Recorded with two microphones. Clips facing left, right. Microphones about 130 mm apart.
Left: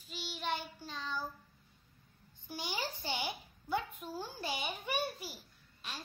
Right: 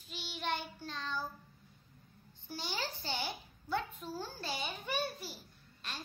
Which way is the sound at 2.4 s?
15° left (ahead or behind).